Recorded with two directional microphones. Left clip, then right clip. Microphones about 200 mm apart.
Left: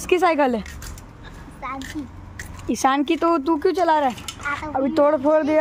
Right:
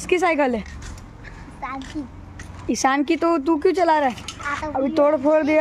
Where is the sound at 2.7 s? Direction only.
5° left (ahead or behind).